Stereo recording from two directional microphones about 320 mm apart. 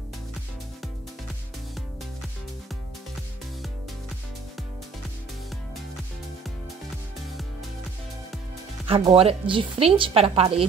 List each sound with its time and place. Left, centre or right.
8.8 s speech: centre